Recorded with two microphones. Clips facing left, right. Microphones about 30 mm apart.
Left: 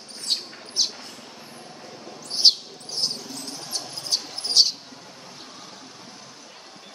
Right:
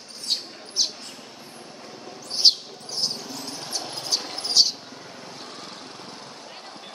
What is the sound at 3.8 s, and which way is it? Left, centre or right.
Cricket, right.